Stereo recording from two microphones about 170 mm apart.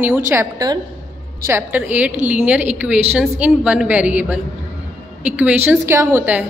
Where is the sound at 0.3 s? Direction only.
20° right (ahead or behind).